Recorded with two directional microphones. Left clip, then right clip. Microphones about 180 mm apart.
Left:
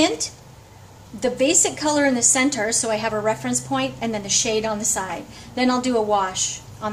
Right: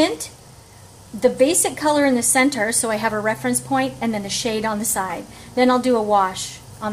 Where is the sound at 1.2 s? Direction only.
30° right (ahead or behind).